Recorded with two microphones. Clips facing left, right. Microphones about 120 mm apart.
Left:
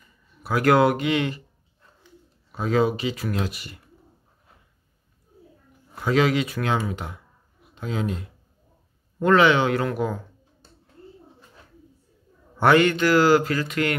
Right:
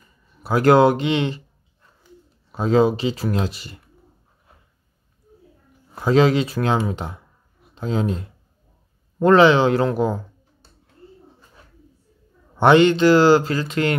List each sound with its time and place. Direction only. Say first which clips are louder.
0.4 s speech: right 4 dB; 30° right (ahead or behind)
2.5 s speech: right 5 dB; 30° right (ahead or behind)
5.9 s speech: right 5 dB; 30° right (ahead or behind)
9.2 s speech: right 4 dB; 30° right (ahead or behind)
12.5 s speech: right 4 dB; 25° right (ahead or behind)